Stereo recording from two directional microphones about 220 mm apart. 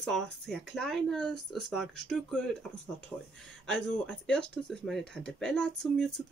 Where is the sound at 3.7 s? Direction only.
5° left (ahead or behind).